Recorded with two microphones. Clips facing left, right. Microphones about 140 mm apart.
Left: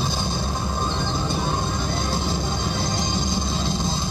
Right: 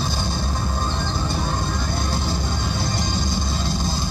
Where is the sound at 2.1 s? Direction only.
20° left (ahead or behind).